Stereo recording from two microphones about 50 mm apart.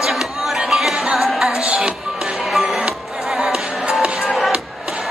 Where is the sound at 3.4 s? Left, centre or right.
Centre.